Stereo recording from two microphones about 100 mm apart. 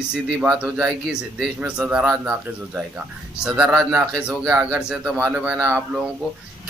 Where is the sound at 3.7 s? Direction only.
10° right (ahead or behind).